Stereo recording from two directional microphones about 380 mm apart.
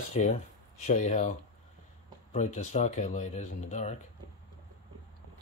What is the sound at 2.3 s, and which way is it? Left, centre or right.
Speech, centre.